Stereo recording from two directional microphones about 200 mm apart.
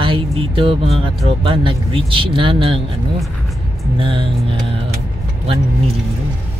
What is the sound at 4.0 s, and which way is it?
Speech, 25° right (ahead or behind).